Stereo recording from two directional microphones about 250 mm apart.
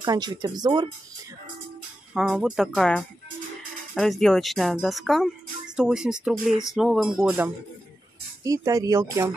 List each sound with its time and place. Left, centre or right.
0.0 s speech: centre
2.1 s speech: centre